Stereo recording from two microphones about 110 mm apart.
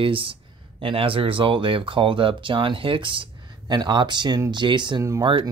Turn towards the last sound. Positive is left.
turn(degrees=-50)  # may be behind; listen again after turning